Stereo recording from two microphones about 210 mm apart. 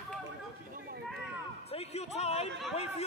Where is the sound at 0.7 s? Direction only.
45° right (ahead or behind).